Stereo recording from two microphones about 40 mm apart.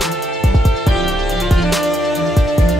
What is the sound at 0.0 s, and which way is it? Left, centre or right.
Music, centre.